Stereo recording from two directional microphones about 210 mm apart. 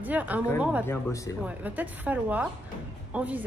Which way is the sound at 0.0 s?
10° right (ahead or behind).